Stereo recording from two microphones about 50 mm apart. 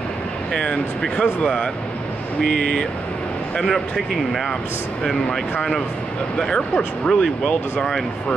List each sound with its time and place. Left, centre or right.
0.5 s speech: centre
2.4 s speech: centre
3.6 s speech: centre